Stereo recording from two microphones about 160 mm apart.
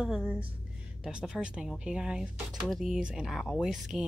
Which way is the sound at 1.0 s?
5° right (ahead or behind).